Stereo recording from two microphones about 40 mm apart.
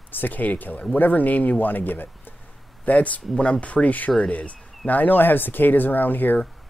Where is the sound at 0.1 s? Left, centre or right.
Left.